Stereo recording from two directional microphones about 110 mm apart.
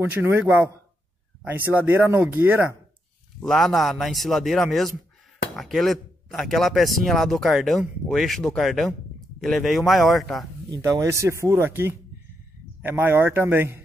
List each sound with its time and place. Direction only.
0.1 s speech: 20° right (ahead or behind)
3.4 s speech: 5° left (ahead or behind)
10.7 s speech: 30° right (ahead or behind)